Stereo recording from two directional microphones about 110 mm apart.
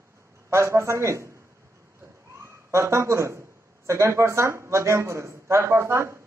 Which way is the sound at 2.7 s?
25° right (ahead or behind).